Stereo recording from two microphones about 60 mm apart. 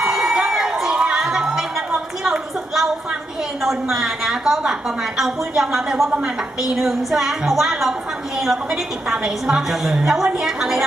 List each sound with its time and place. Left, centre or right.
0.0 s crowd: centre
2.2 s a sound: centre
3.6 s a woman's voice: centre
6.0 s a woman's voice: centre
6.6 s a woman's voice: centre
9.1 s a woman's voice: centre